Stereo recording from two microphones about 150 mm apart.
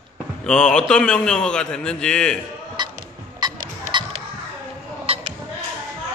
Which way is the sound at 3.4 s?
25° right (ahead or behind).